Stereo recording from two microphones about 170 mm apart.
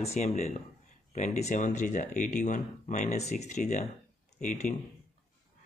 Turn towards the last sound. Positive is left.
turn(degrees=45)  # may be behind; listen again after turning